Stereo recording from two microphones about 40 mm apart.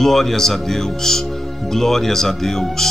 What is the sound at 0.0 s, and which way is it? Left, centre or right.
Speech, centre.